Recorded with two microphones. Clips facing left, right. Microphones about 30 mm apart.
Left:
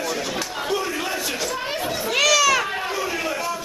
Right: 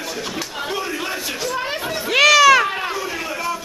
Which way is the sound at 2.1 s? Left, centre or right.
Right.